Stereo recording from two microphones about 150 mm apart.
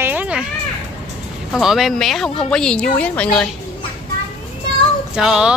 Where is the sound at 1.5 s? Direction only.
Centre (ahead or behind).